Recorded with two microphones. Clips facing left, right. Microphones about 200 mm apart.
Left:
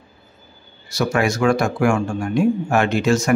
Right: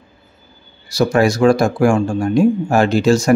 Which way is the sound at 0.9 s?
35° right (ahead or behind).